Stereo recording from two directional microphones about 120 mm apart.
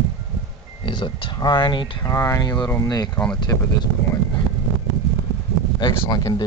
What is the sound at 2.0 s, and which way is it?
Speech, 25° left (ahead or behind).